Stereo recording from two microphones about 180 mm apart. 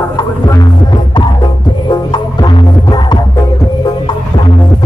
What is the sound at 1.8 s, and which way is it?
Music, 25° left (ahead or behind).